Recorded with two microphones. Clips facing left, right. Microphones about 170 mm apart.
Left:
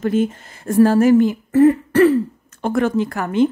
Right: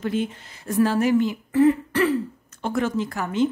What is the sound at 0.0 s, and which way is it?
Speech, 45° left (ahead or behind).